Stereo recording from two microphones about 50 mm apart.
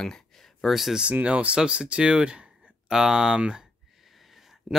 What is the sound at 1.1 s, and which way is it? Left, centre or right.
Speech, right.